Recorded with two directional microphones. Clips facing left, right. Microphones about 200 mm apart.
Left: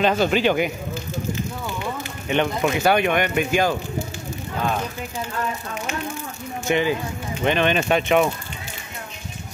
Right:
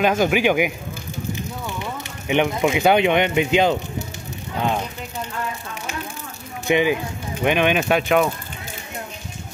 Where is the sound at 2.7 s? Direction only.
15° right (ahead or behind).